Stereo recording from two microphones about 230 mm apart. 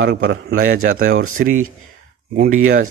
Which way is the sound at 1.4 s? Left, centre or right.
Right.